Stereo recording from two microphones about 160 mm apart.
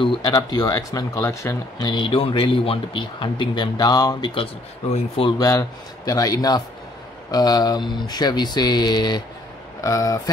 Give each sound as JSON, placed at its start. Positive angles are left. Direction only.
{"t": 0.0, "sound": "speech", "side_deg": 30}
{"t": 4.9, "sound": "speech", "side_deg": 35}
{"t": 5.4, "sound": "speech", "side_deg": 20}